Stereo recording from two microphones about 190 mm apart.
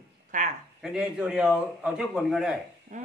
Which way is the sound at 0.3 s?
40° right (ahead or behind).